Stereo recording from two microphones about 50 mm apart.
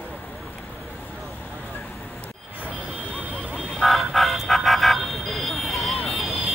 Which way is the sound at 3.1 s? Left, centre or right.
Right.